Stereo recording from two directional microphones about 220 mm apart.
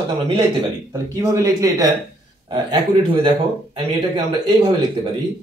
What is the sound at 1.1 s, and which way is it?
Speech, 15° right (ahead or behind).